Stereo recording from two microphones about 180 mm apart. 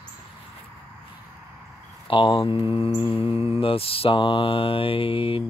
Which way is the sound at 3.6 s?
30° left (ahead or behind).